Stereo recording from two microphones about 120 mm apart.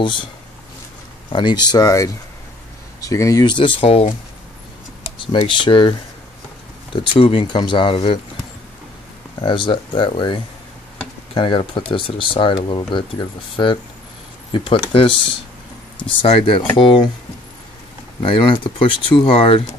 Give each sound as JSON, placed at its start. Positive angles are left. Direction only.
{"t": 0.0, "sound": "speech", "side_deg": 40}
{"t": 1.3, "sound": "speech", "side_deg": 40}
{"t": 3.5, "sound": "speech", "side_deg": 45}
{"t": 5.5, "sound": "speech", "side_deg": 45}
{"t": 9.4, "sound": "speech", "side_deg": 45}
{"t": 18.2, "sound": "speech", "side_deg": 45}